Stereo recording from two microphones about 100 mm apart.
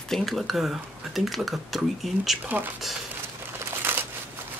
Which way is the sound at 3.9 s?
20° right (ahead or behind).